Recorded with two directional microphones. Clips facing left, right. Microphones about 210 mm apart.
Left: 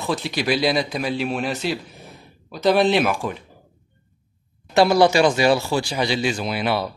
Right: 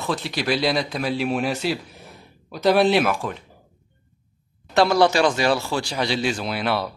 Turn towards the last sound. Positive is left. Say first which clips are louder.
# left 1 dB
turn(degrees=0)  # may be behind; listen again after turning